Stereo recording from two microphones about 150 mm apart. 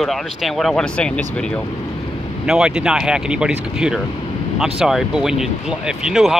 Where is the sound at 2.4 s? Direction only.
5° right (ahead or behind).